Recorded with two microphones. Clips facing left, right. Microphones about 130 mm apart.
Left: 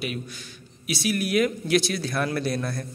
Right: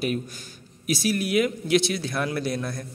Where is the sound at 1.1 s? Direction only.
25° right (ahead or behind).